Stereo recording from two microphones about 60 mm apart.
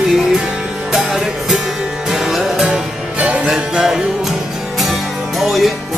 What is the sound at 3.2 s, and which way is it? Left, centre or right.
Music, centre.